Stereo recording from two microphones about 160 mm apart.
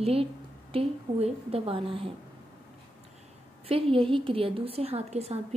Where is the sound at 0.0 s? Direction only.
35° right (ahead or behind).